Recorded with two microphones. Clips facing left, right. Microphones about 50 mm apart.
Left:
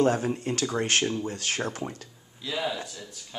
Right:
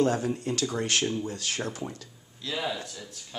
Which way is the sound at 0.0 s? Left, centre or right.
Left.